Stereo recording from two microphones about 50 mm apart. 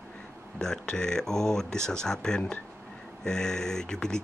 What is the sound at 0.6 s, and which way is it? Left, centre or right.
Speech, centre.